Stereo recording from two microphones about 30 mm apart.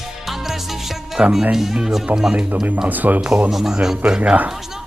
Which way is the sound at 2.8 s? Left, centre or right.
Right.